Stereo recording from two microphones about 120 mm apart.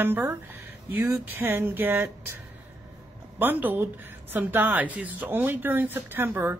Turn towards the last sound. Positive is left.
turn(degrees=-20)  # may be behind; listen again after turning